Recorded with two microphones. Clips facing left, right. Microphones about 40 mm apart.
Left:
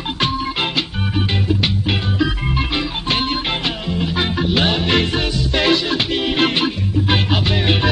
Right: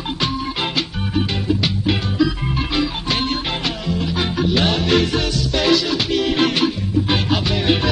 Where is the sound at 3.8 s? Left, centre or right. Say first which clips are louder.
Left 1 dB; left.